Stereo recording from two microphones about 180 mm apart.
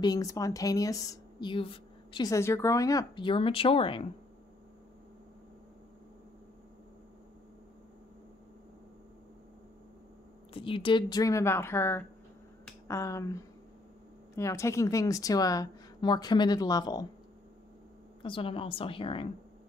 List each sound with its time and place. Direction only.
0.0 s a woman's voice: 20° left (ahead or behind)
10.5 s a woman's voice: 30° left (ahead or behind)
18.2 s a woman's voice: 30° left (ahead or behind)